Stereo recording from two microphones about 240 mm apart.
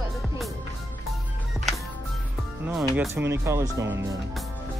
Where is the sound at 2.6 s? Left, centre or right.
Centre.